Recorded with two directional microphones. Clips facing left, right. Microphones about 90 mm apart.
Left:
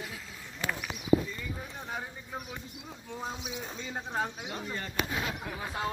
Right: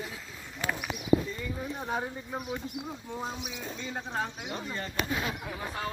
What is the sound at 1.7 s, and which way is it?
Speech, 20° right (ahead or behind).